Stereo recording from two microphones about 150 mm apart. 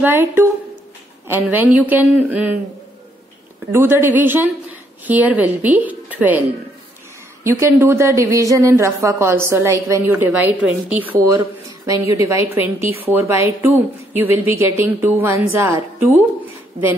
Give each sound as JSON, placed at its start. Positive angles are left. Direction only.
{"t": 0.0, "sound": "a woman's voice", "side_deg": -15}
{"t": 3.7, "sound": "a woman's voice", "side_deg": -15}
{"t": 7.4, "sound": "speech", "side_deg": -20}
{"t": 11.1, "sound": "a woman's voice", "side_deg": -20}